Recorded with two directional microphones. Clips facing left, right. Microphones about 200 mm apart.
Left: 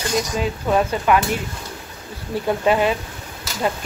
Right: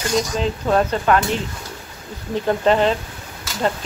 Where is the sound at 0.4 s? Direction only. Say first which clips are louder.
Even; 5° left (ahead or behind).